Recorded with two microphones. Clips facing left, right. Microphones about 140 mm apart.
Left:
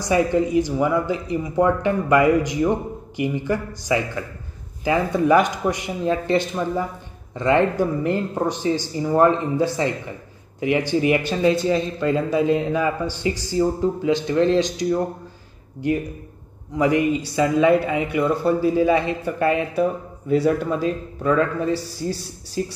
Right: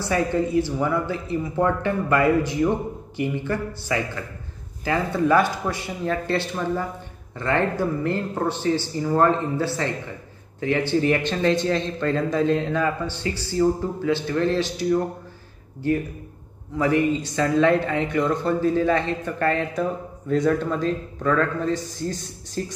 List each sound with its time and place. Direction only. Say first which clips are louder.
0.0 s speech: left 3 dB; 15° left (ahead or behind)